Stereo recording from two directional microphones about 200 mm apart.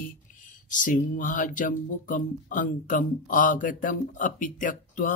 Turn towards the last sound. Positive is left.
turn(degrees=40)  # may be behind; listen again after turning